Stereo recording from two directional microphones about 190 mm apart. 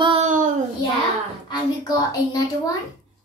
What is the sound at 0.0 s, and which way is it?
Child singing, 30° right (ahead or behind).